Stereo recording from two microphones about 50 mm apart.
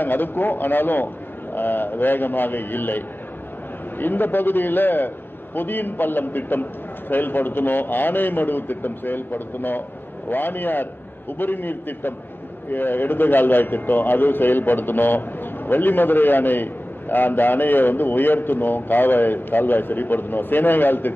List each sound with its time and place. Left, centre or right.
0.0 s a man's voice: left
4.0 s a man's voice: left